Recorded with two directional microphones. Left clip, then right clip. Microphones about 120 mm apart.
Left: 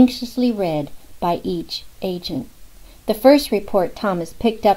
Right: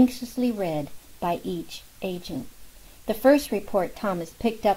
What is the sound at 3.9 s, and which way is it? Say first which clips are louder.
Speech: left 6 dB; 10° right (ahead or behind).